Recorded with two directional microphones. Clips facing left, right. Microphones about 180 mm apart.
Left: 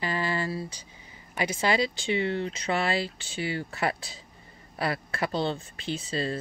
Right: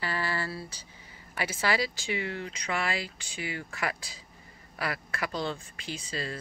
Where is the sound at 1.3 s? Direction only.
15° left (ahead or behind).